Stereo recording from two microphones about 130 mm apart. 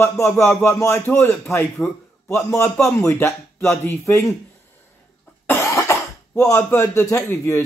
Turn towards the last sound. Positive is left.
turn(degrees=20)  # may be behind; listen again after turning